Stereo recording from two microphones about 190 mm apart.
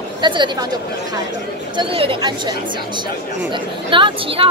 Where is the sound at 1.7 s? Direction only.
30° right (ahead or behind).